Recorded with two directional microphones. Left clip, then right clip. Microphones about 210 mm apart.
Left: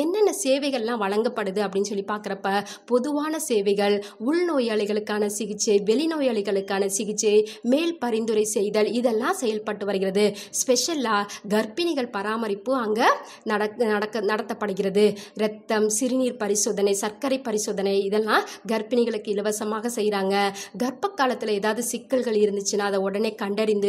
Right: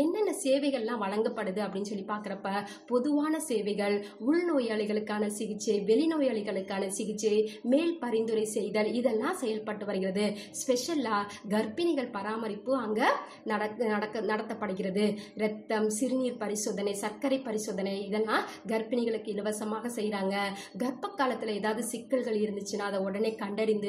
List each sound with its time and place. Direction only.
0.1 s a woman's voice: 50° left (ahead or behind)